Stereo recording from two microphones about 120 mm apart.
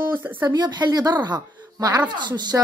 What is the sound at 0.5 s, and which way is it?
A woman's voice, 40° right (ahead or behind).